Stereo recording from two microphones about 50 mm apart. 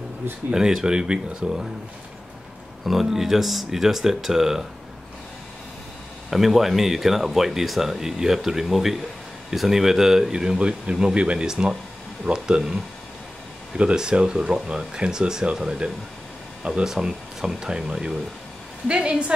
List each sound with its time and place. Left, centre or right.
0.5 s speech: centre
2.8 s speech: centre
6.3 s speech: centre
13.7 s a woman's voice: centre